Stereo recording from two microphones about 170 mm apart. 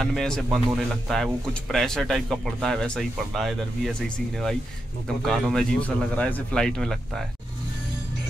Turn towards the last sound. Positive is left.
turn(degrees=0)  # may be behind; listen again after turning